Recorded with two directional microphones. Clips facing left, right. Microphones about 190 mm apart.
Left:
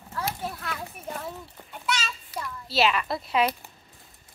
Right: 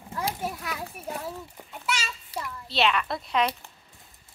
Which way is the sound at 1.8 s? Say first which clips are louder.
Left 1 dB; 10° right (ahead or behind).